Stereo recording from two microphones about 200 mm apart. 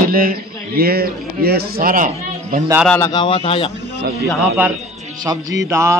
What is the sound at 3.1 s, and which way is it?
Speech, 25° left (ahead or behind).